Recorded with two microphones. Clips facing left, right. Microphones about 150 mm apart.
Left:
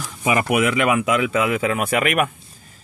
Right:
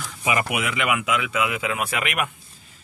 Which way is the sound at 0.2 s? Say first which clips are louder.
Left 6 dB; 45° left (ahead or behind).